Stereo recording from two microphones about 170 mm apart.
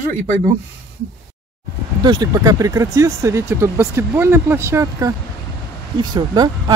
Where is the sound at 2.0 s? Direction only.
25° right (ahead or behind).